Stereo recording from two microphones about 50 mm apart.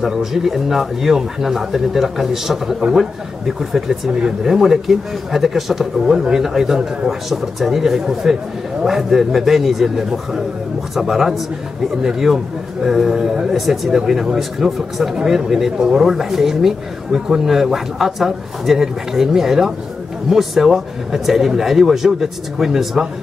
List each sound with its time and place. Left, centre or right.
0.0 s a man's voice: centre